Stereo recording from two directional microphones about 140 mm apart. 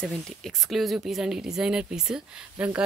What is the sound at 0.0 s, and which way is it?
A woman's voice, 5° left (ahead or behind).